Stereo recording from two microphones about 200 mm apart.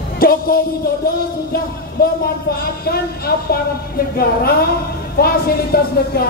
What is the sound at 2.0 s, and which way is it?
Speech, 50° left (ahead or behind).